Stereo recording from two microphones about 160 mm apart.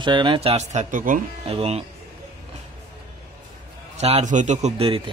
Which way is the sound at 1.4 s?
40° right (ahead or behind).